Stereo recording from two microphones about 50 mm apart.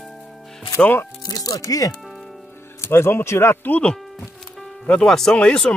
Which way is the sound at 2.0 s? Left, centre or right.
Centre.